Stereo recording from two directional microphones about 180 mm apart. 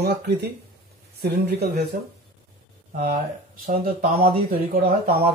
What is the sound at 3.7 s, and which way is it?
Speech, 55° right (ahead or behind).